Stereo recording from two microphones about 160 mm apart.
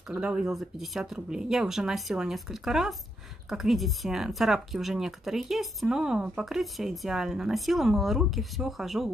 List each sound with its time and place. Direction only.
0.1 s speech: 5° right (ahead or behind)